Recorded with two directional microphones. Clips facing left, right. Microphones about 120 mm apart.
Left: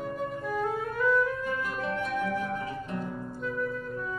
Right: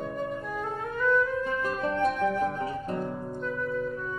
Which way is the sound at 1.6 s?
40° right (ahead or behind).